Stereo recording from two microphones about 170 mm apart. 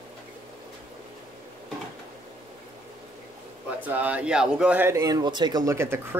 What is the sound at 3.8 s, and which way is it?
Speech, 10° right (ahead or behind).